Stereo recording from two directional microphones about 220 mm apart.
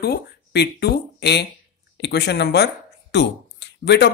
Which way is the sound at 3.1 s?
50° left (ahead or behind).